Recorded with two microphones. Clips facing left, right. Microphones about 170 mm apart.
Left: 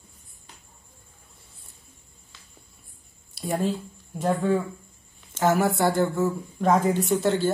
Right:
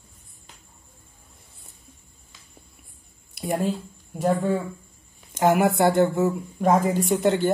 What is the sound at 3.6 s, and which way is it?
Speech, 10° right (ahead or behind).